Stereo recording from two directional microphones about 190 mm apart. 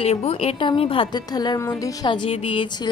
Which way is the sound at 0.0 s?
30° left (ahead or behind).